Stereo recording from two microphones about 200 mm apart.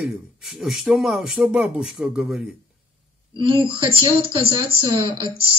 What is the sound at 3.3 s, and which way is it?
Speech, 25° right (ahead or behind).